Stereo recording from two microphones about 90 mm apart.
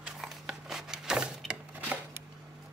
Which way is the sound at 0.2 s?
5° right (ahead or behind).